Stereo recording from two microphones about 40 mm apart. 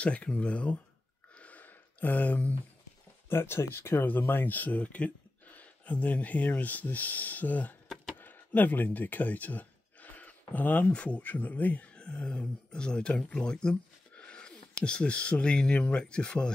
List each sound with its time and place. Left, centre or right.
0.0 s speech: left
1.3 s a sound: left
3.3 s speech: left
4.0 s speech: left
10.1 s a sound: left
10.9 s speech: left
11.9 s speech: left
16.0 s speech: left